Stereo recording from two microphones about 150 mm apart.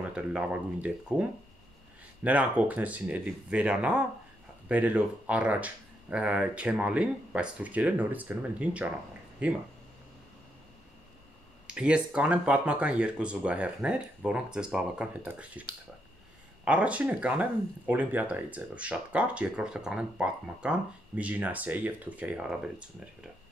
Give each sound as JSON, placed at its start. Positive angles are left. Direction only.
{"t": 0.0, "sound": "speech", "side_deg": -10}
{"t": 2.2, "sound": "speech", "side_deg": -10}
{"t": 11.6, "sound": "speech", "side_deg": -5}
{"t": 16.6, "sound": "speech", "side_deg": -10}